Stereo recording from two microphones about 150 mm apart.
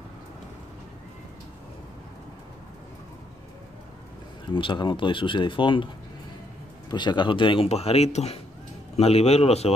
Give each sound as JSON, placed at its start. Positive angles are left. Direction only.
{"t": 4.6, "sound": "speech", "side_deg": 35}
{"t": 6.9, "sound": "speech", "side_deg": 30}